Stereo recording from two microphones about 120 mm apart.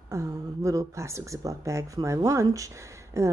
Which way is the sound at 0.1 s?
25° right (ahead or behind).